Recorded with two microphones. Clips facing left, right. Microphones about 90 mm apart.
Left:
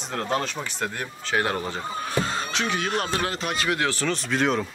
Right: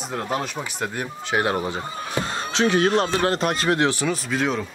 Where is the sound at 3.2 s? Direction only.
45° right (ahead or behind).